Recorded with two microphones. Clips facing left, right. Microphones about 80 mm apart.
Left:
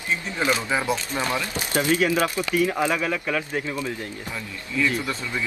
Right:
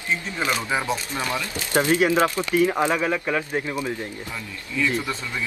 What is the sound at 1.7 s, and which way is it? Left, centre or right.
Speech, right.